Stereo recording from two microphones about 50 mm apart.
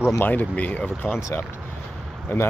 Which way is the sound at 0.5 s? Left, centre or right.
Left.